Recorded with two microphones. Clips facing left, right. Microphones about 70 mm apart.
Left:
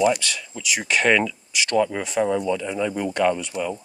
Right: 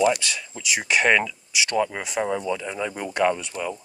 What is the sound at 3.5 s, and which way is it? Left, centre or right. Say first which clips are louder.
Speech: left 3 dB; left.